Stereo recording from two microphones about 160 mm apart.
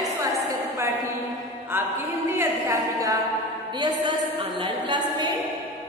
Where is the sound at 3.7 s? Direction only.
30° right (ahead or behind).